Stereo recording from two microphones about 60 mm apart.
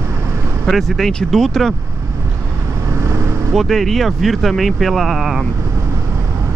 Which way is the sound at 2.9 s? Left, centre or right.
Right.